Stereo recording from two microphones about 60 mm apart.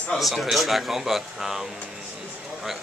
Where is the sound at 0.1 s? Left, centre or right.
Centre.